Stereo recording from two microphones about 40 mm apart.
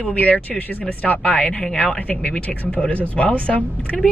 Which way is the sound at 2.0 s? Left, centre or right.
Left.